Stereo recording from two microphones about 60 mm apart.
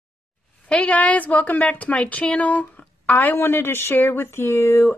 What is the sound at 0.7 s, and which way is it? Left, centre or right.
A woman's voice, left.